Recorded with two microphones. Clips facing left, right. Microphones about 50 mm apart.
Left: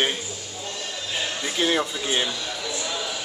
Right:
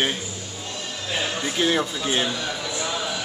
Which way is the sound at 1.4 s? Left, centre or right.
Centre.